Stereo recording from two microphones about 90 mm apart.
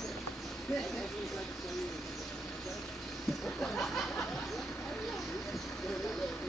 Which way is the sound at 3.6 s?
Centre (ahead or behind).